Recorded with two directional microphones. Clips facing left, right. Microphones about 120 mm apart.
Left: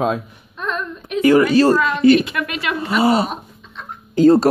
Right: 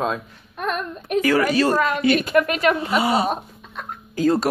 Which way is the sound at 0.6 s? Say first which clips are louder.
Even; 55° right (ahead or behind).